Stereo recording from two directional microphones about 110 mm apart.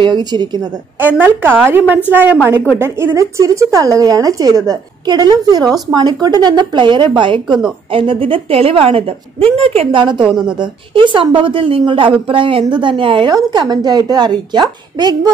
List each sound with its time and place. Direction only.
0.0 s speech: 40° right (ahead or behind)
0.9 s a woman's voice: 15° right (ahead or behind); by 10.0 s 60° right (ahead or behind)
10.0 s a woman's voice: 45° right (ahead or behind)
13.3 s speech: 35° right (ahead or behind)